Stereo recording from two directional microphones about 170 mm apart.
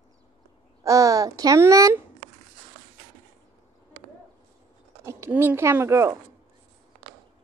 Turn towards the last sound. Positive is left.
turn(degrees=-15)  # may be behind; listen again after turning